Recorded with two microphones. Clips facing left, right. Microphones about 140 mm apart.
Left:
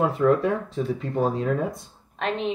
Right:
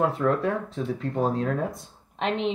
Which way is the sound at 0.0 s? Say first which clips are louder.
Left 3 dB; centre (ahead or behind).